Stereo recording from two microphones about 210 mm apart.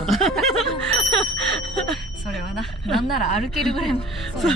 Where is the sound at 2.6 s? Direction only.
Centre (ahead or behind).